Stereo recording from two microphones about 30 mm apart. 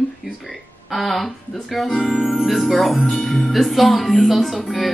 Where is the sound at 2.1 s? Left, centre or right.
Right.